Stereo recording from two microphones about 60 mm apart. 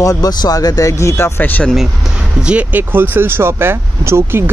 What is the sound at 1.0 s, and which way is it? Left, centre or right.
Speech, left.